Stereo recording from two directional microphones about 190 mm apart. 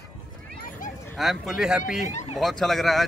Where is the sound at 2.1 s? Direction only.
35° left (ahead or behind).